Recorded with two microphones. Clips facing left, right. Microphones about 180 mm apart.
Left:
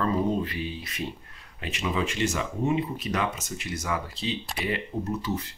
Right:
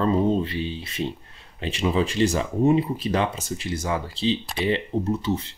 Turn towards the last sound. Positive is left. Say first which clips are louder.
# right 5 dB
turn(degrees=-25)  # may be behind; listen again after turning